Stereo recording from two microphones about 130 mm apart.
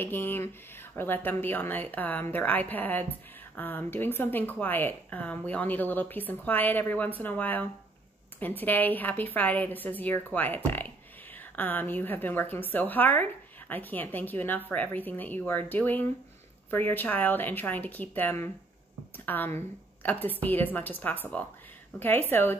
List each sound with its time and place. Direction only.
0.0 s speech: 15° left (ahead or behind)